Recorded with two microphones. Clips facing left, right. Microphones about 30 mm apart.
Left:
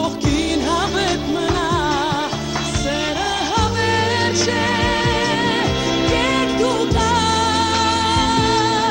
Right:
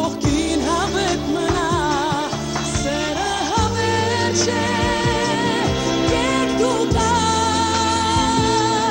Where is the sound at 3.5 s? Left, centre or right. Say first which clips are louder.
Left 2 dB; left.